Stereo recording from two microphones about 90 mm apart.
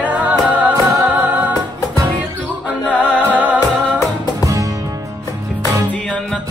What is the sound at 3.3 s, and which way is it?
Music, 15° right (ahead or behind).